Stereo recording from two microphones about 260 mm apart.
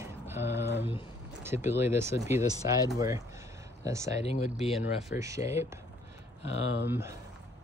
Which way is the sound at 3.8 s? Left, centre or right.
Centre.